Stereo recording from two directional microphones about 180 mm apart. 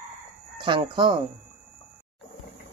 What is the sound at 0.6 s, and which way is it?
Speech, 25° right (ahead or behind).